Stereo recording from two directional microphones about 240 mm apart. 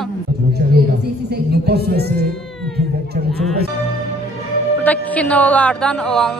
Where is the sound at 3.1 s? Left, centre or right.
Right.